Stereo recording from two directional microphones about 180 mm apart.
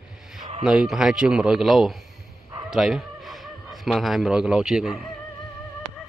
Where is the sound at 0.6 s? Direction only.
5° right (ahead or behind).